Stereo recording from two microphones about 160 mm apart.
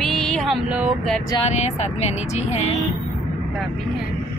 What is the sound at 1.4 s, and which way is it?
Speech, 45° left (ahead or behind).